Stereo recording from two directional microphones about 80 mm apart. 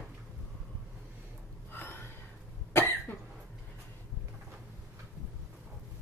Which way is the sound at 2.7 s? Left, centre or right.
Left.